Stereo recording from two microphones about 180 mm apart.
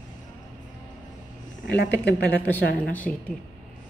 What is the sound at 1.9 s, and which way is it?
Speech, 10° left (ahead or behind).